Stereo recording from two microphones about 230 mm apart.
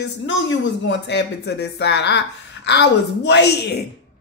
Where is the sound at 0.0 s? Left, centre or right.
Left.